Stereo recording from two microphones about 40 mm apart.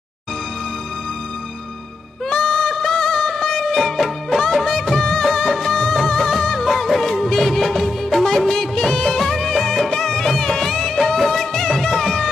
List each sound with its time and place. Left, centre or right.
2.2 s music: centre
4.8 s music of bollywood: centre
9.8 s music: centre
11.1 s music: centre